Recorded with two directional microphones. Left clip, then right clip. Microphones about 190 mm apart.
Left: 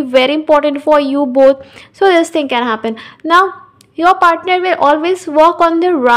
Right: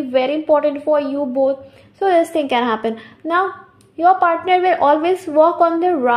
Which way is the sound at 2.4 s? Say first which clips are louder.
Left 3 dB; 10° left (ahead or behind).